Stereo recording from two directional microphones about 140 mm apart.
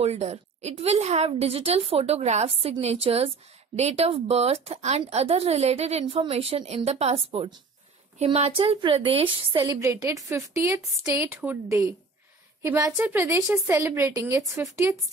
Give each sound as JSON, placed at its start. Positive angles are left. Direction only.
{"t": 0.0, "sound": "a woman's voice", "side_deg": -50}
{"t": 9.6, "sound": "speech", "side_deg": -25}